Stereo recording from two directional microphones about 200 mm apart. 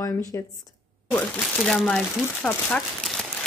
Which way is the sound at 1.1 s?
5° left (ahead or behind).